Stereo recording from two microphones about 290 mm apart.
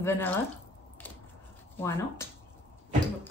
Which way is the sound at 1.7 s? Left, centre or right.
Centre.